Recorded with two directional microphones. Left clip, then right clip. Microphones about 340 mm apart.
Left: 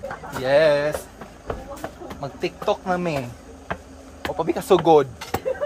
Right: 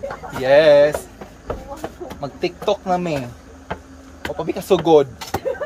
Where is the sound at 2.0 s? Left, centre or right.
Centre.